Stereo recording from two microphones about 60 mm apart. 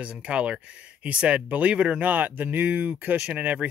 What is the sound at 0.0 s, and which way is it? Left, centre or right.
Speech, centre.